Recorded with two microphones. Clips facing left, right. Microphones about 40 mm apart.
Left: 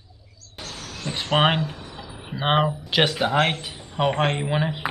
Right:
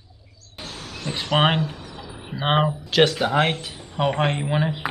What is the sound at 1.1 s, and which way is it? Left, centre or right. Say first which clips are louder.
Speech: even; centre.